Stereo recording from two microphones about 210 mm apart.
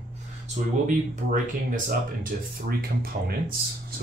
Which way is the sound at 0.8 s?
40° right (ahead or behind).